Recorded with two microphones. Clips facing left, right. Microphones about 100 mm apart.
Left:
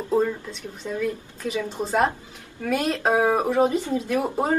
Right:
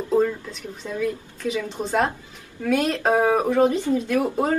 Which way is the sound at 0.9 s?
Centre (ahead or behind).